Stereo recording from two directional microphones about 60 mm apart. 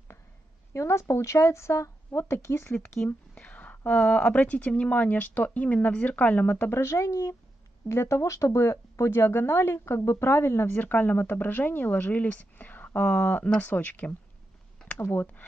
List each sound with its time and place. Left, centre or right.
0.7 s speech: left
3.3 s a woman's voice: left
6.7 s speech: left
7.9 s speech: left
9.1 s speech: left
10.8 s a woman's voice: left
15.0 s speech: left